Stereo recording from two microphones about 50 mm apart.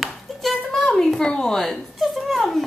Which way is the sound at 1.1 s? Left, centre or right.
Centre.